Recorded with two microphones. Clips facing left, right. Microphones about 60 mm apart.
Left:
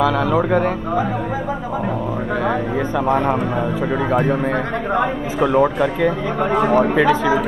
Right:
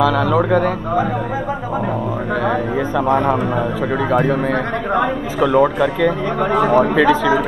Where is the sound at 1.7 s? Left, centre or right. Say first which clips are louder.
Right 2 dB; centre.